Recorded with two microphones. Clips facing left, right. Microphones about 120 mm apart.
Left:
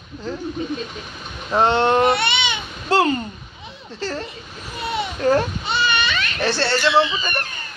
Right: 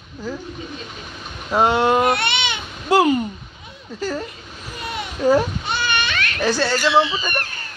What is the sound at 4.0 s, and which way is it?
Speech, 10° right (ahead or behind).